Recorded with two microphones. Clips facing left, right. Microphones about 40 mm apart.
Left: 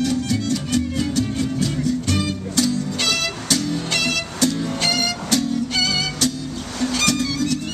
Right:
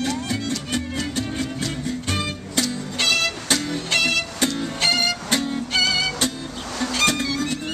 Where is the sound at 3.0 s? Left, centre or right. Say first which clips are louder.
Right 1 dB; centre.